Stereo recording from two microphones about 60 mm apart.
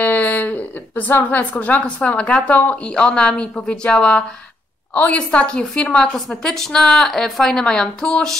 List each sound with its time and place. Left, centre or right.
0.0 s a woman's voice: left
6.1 s a woman's voice: centre